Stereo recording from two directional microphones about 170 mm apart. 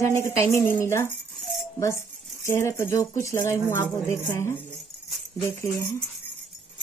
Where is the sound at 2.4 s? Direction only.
15° left (ahead or behind).